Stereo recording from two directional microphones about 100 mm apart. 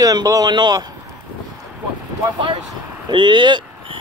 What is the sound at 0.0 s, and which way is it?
Speech, 40° right (ahead or behind).